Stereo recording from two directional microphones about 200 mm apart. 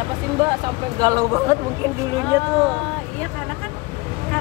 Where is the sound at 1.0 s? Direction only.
20° right (ahead or behind).